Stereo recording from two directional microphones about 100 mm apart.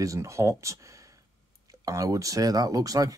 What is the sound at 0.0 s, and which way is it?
Speech, 30° right (ahead or behind).